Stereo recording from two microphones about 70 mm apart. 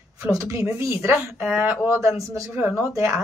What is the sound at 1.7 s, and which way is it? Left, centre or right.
Speech, right.